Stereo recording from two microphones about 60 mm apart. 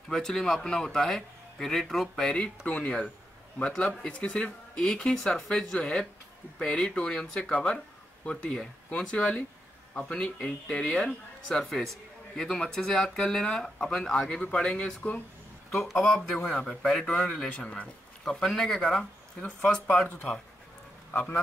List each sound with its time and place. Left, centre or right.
0.1 s speech: centre
2.3 s a man's voice: left
16.0 s speech: centre
18.2 s speech: centre